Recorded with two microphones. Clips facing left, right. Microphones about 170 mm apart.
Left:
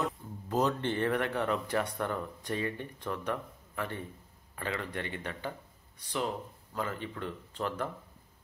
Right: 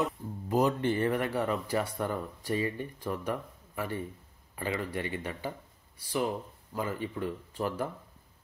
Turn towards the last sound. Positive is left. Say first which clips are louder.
# right 2 dB
turn(degrees=-10)  # may be behind; listen again after turning